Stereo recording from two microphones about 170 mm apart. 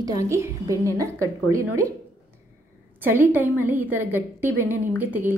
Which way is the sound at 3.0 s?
10° right (ahead or behind).